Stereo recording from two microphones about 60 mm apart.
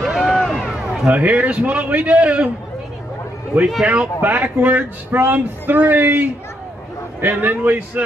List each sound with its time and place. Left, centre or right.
0.0 s run: centre
0.7 s a man's voice: centre
3.8 s speech: centre